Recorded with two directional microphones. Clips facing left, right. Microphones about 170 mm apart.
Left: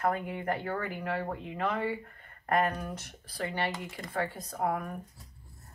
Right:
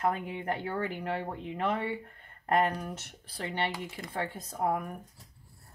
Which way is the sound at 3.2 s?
25° right (ahead or behind).